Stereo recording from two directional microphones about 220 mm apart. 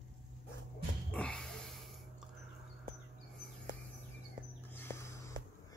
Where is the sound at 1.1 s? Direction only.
5° left (ahead or behind).